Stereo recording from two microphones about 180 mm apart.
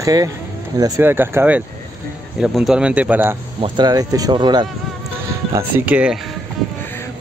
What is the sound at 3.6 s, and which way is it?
Speech, 25° right (ahead or behind).